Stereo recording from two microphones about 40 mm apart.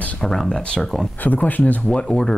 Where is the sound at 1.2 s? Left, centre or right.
Left.